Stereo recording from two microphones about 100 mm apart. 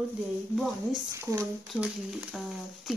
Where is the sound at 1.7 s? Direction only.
10° right (ahead or behind).